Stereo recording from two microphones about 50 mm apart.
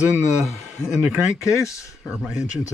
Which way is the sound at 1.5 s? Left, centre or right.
Left.